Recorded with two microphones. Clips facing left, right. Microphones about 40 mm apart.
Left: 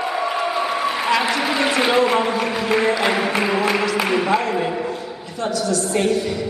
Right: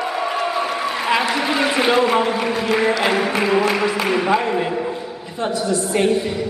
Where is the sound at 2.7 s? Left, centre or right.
Centre.